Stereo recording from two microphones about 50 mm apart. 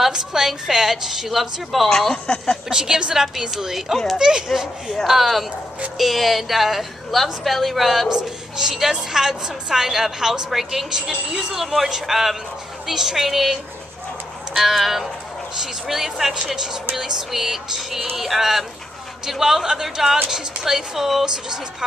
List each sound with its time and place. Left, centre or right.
0.1 s a woman's voice: centre
2.2 s speech: left
2.7 s a woman's voice: centre
8.1 s a woman's voice: centre